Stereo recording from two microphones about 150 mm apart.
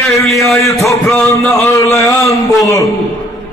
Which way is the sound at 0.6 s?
20° left (ahead or behind).